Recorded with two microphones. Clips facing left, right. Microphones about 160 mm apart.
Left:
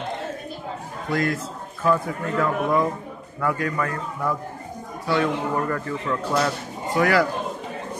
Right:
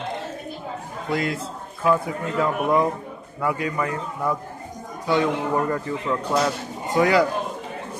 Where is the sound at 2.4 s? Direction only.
15° right (ahead or behind).